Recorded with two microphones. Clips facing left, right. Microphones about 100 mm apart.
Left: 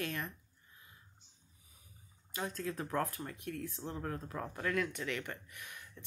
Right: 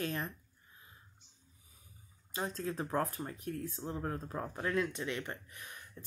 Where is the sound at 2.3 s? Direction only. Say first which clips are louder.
Right 2 dB; 30° right (ahead or behind).